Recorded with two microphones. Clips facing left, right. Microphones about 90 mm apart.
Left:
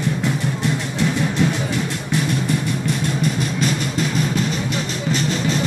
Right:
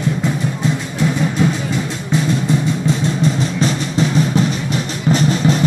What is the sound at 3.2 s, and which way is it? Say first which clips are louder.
Music: right 4 dB; 30° right (ahead or behind).